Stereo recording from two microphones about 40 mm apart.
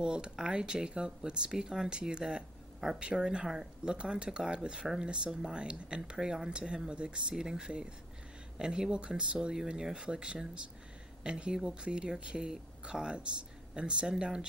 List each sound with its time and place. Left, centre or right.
0.0 s speech: centre